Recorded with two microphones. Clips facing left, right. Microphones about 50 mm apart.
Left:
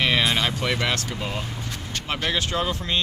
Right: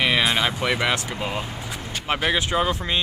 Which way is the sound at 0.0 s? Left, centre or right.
Centre.